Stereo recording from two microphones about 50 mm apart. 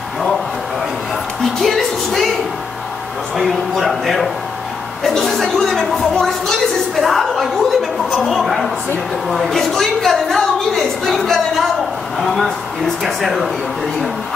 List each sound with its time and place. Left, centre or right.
1.4 s a woman's voice: centre
3.3 s a woman's voice: centre